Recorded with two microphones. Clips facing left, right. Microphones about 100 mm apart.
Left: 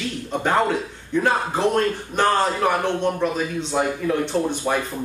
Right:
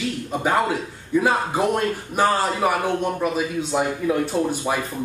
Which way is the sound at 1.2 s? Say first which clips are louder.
Right 1 dB; 10° right (ahead or behind).